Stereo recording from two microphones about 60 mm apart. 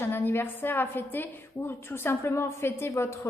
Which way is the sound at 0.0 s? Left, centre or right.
Left.